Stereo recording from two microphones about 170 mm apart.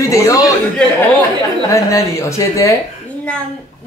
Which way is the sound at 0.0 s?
20° left (ahead or behind).